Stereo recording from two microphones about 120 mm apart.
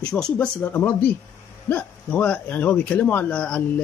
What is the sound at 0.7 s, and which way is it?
Speech, 15° left (ahead or behind).